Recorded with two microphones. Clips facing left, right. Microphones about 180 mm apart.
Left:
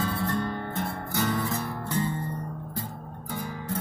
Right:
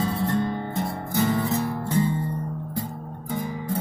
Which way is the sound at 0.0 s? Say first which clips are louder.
Right 4 dB; 25° right (ahead or behind).